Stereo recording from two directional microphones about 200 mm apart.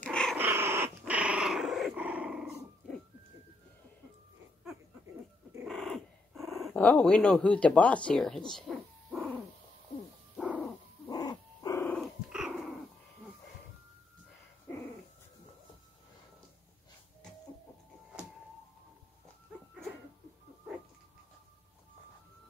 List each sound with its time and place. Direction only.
0.0 s dog: 5° left (ahead or behind)
0.4 s dog: 10° right (ahead or behind)
5.7 s speech: centre (ahead or behind)
9.1 s a sound: 10° right (ahead or behind)
11.1 s dog: 20° left (ahead or behind)
12.0 s dog: 5° right (ahead or behind)